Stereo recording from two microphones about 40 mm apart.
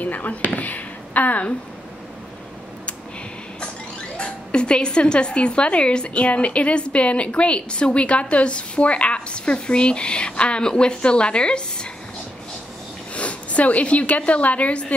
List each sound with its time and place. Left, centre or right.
0.0 s speech: left
4.2 s speech: left
13.1 s a woman's voice: left